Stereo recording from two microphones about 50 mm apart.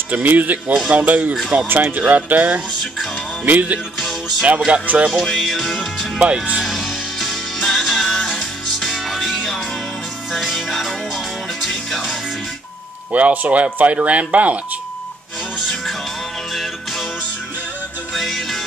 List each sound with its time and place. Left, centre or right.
0.1 s speech: right
5.1 s music: centre
6.1 s speech: right
6.6 s music: centre
13.1 s speech: right
18.1 s music: centre